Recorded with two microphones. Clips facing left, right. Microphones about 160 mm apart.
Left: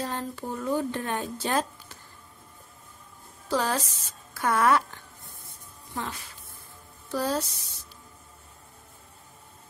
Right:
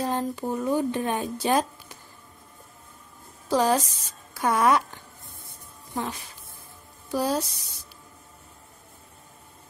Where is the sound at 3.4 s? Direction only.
15° right (ahead or behind).